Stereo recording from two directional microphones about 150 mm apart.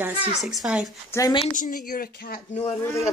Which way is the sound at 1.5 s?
65° left (ahead or behind).